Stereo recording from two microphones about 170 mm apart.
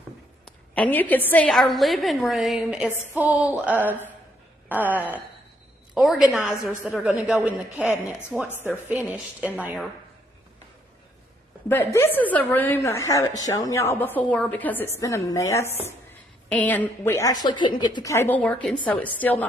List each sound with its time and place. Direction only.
0.7 s a woman's voice: 10° left (ahead or behind); by 9.8 s 5° right (ahead or behind)
11.7 s a woman's voice: 15° left (ahead or behind)